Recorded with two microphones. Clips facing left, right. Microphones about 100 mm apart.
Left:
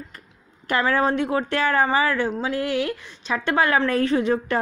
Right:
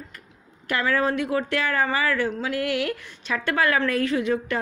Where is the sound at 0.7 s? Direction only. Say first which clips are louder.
Left 3 dB; 30° left (ahead or behind).